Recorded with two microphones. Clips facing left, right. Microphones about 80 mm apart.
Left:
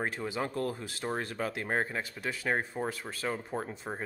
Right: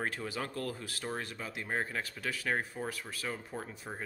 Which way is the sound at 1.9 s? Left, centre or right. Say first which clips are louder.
Left 2 dB; left.